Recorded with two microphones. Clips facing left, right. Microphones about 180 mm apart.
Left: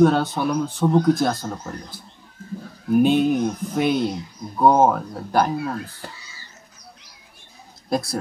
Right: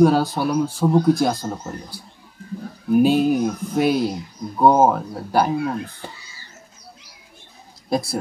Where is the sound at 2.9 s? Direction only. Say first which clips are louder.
Right 1 dB; 5° right (ahead or behind).